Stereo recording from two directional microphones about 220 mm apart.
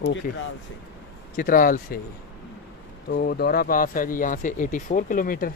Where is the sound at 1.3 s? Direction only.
40° left (ahead or behind).